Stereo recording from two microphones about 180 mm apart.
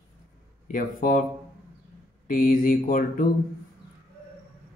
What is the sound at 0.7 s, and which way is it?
Speech, 50° left (ahead or behind).